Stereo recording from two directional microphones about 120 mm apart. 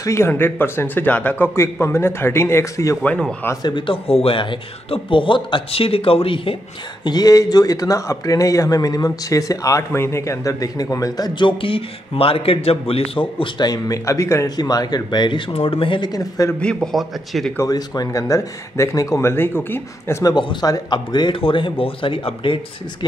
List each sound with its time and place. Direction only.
0.0 s speech: 25° left (ahead or behind)
3.0 s speech: 10° left (ahead or behind)
3.6 s a man's voice: 45° left (ahead or behind)
7.1 s speech: 30° left (ahead or behind)
13.7 s speech: 30° left (ahead or behind); by 16.1 s 45° left (ahead or behind)
16.1 s speech: 30° left (ahead or behind)
16.5 s a man's voice: 5° left (ahead or behind)
17.6 s speech: 30° left (ahead or behind)
20.3 s a man's voice: 35° left (ahead or behind)